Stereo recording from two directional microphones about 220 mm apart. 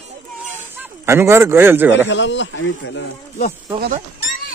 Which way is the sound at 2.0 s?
55° left (ahead or behind).